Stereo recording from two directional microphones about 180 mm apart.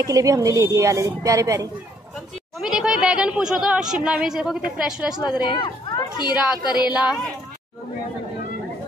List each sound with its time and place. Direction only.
0.0 s speech: 20° right (ahead or behind)
2.6 s speech: 5° right (ahead or behind)
5.5 s speech: 25° left (ahead or behind)
6.3 s speech: 5° right (ahead or behind)